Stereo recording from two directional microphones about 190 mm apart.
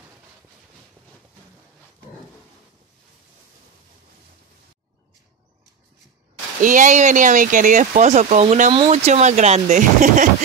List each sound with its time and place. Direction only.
6.6 s speech: 45° right (ahead or behind)